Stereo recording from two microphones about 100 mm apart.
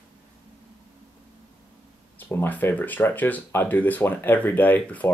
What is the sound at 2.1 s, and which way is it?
Speech, 20° left (ahead or behind).